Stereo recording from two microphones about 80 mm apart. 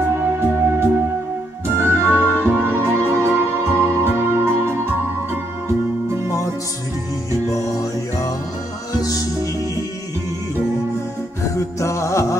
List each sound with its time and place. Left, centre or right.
0.1 s music: right
9.0 s music: left
11.4 s music: left